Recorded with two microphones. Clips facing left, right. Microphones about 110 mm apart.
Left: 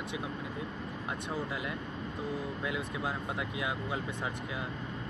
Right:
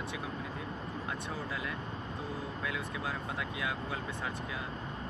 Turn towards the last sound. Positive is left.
turn(degrees=20)  # may be behind; listen again after turning